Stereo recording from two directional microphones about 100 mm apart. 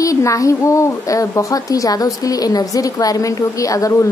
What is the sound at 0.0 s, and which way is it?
A woman's voice, 35° left (ahead or behind).